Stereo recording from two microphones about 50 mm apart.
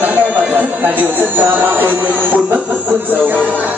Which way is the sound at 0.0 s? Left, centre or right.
Right.